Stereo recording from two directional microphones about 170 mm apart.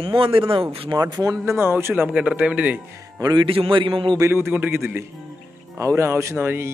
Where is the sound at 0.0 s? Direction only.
30° right (ahead or behind); by 2.8 s 10° right (ahead or behind).